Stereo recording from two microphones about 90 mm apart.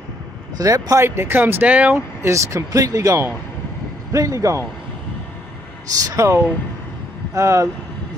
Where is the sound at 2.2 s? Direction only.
35° right (ahead or behind).